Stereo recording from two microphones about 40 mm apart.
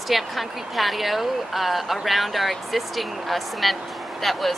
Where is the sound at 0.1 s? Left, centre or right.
Centre.